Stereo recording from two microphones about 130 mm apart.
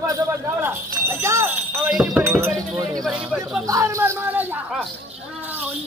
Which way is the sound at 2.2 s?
20° right (ahead or behind).